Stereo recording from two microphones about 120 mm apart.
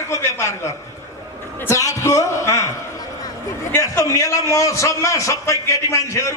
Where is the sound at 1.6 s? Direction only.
25° left (ahead or behind).